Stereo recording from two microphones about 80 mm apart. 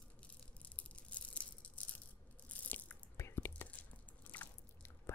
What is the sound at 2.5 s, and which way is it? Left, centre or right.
Biting, centre.